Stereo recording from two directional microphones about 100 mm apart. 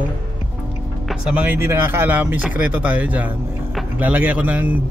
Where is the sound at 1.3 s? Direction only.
20° right (ahead or behind).